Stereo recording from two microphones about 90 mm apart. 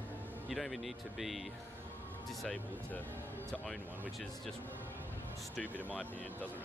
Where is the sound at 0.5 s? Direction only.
Centre (ahead or behind).